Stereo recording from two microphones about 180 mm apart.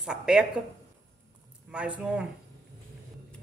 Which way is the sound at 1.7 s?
5° right (ahead or behind).